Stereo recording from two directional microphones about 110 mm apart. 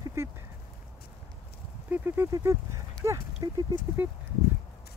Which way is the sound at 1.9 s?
20° right (ahead or behind).